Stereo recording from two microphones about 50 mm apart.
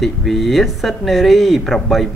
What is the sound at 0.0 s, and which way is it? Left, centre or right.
Speech, centre.